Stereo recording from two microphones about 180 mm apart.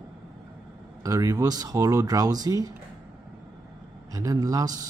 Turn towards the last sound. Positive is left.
turn(degrees=-20)  # may be behind; listen again after turning